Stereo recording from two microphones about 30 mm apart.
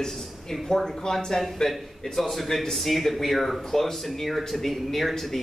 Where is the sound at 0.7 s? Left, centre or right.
Centre.